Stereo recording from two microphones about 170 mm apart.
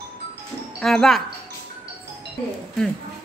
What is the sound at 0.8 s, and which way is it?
Speech, centre (ahead or behind).